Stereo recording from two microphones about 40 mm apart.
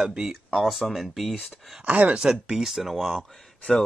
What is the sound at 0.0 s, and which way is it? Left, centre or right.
Speech, centre.